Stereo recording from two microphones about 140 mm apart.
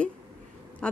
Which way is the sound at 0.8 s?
10° left (ahead or behind).